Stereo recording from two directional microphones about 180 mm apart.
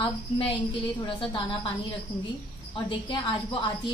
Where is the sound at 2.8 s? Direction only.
25° left (ahead or behind).